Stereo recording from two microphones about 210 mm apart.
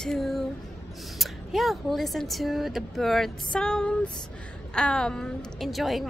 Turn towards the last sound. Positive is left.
turn(degrees=0)  # may be behind; listen again after turning